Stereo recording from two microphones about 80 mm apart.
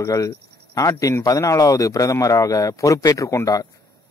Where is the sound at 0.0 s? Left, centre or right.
Left.